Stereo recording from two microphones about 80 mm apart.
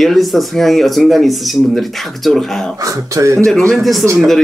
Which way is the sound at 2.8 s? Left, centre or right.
Right.